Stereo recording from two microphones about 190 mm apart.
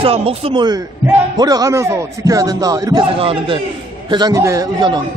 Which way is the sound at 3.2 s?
30° right (ahead or behind).